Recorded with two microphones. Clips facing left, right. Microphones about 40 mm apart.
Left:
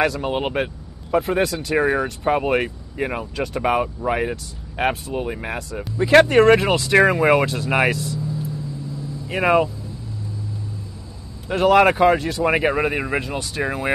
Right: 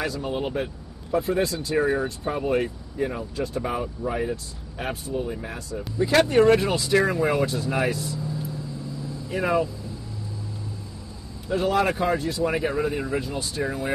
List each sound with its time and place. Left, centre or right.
0.0 s speech: left
9.3 s speech: left
11.4 s speech: left